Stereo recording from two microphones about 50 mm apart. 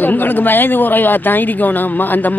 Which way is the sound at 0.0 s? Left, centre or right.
Left.